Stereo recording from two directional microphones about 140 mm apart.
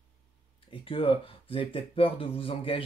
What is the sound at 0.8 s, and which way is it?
Speech, 40° left (ahead or behind).